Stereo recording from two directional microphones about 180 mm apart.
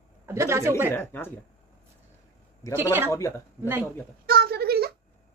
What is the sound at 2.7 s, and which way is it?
Speech, 10° right (ahead or behind).